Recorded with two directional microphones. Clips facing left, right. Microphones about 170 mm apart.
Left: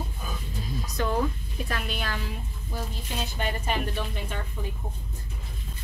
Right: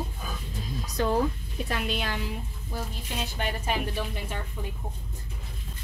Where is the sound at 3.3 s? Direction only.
5° right (ahead or behind).